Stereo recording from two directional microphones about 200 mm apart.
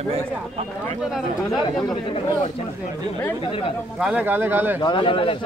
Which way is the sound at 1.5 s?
20° left (ahead or behind).